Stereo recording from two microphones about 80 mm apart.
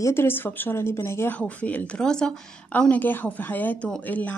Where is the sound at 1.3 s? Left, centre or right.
Centre.